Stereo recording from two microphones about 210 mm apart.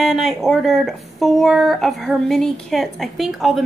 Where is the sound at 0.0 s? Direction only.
Centre (ahead or behind).